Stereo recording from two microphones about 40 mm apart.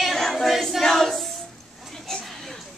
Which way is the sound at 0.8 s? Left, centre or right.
Centre.